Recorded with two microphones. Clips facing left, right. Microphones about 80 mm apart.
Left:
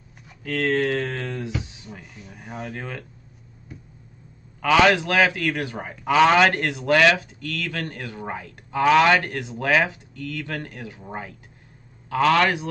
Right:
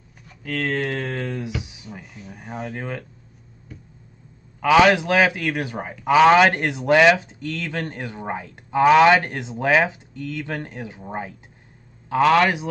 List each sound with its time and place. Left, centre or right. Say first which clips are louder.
0.4 s a man's voice: left 2 dB; centre
4.6 s a man's voice: right 2 dB; centre